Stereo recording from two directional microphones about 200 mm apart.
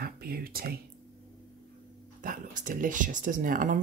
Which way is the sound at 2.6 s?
40° right (ahead or behind).